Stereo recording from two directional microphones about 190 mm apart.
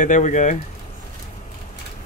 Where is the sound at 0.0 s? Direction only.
40° left (ahead or behind).